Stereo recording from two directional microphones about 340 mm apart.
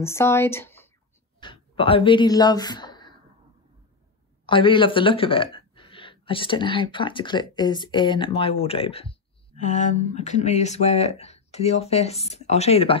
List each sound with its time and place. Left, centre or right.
0.0 s speech: centre
4.5 s speech: centre